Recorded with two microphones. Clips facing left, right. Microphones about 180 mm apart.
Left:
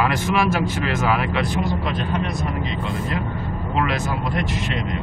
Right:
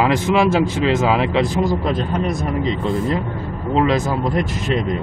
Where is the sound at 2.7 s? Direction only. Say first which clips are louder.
Right 7 dB; 30° right (ahead or behind).